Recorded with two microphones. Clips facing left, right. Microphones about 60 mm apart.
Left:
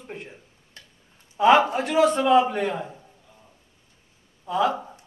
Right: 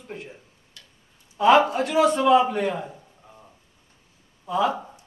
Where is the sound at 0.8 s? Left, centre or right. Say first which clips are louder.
Left 2 dB; left.